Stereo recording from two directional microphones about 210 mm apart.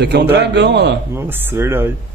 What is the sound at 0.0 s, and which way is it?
Speech, 50° right (ahead or behind).